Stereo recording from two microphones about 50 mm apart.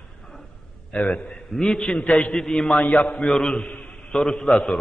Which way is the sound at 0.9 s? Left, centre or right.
Centre.